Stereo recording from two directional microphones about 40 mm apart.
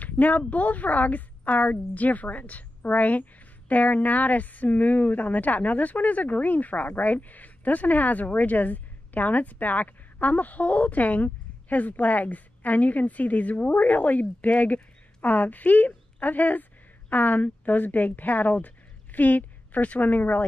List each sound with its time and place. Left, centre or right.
0.0 s a woman's voice: left